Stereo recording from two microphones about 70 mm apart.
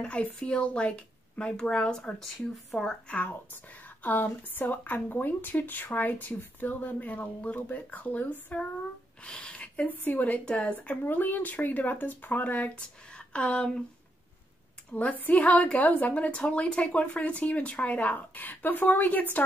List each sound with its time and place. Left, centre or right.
0.0 s speech: centre
3.1 s speech: left
14.9 s speech: left